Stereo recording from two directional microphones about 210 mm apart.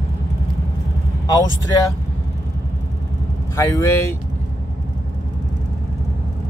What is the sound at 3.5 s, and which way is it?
Speech, 15° left (ahead or behind).